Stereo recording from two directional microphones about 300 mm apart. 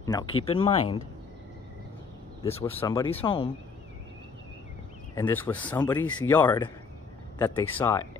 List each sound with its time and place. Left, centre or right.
0.0 s speech: centre
2.6 s speech: centre
5.1 s speech: centre